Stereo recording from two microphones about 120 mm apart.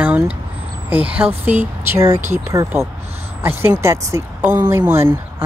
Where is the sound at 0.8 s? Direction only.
10° right (ahead or behind).